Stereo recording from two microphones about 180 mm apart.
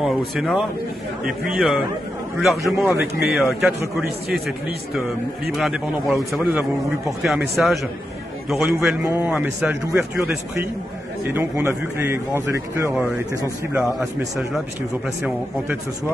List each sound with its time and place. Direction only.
0.0 s a man's voice: centre (ahead or behind)
9.0 s a man's voice: 10° right (ahead or behind)
13.7 s a man's voice: centre (ahead or behind)